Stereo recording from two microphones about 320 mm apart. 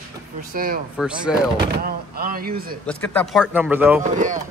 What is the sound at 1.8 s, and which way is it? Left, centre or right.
Speech, right.